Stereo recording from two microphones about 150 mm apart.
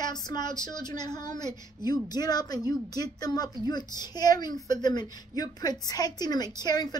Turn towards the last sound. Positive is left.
turn(degrees=25)  # may be behind; listen again after turning